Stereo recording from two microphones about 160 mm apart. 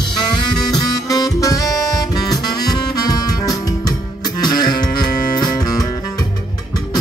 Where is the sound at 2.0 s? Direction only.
25° left (ahead or behind).